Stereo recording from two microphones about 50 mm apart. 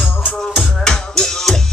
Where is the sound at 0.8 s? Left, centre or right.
Centre.